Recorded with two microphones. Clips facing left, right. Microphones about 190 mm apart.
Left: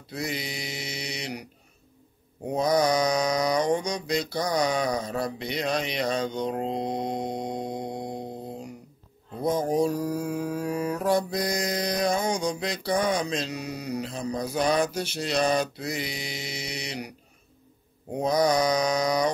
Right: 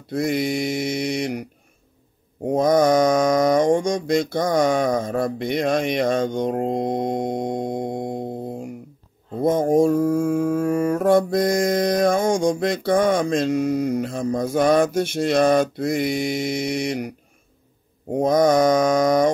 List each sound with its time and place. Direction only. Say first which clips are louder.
0.1 s mantra: right 11 dB; 50° right (ahead or behind)
8.5 s a sound: right 7 dB; 50° right (ahead or behind)
9.3 s mantra: right 7 dB; 50° right (ahead or behind)
18.1 s mantra: right 6 dB; 50° right (ahead or behind)